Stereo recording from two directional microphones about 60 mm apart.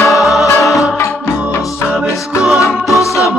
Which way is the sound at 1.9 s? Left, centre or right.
Centre.